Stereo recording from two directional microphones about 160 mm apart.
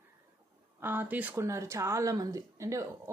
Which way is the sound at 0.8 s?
10° right (ahead or behind).